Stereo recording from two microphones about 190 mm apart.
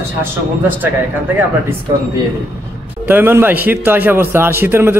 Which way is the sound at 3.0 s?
10° right (ahead or behind).